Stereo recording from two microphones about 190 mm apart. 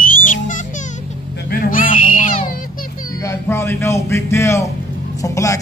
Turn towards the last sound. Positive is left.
turn(degrees=15)  # may be behind; listen again after turning